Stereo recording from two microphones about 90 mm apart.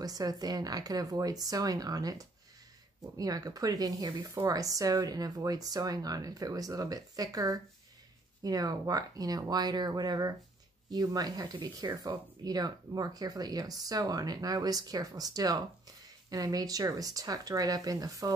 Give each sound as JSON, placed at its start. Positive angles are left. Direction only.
{"t": 0.0, "sound": "speech", "side_deg": -45}